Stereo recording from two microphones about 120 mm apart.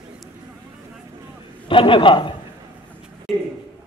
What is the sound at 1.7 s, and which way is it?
Speech, 45° left (ahead or behind).